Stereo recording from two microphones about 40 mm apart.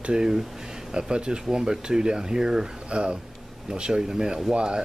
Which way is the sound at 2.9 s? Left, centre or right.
Right.